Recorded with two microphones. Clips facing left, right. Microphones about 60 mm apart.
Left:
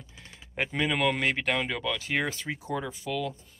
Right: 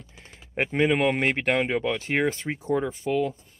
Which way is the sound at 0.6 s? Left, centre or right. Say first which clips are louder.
Right 5 dB; right.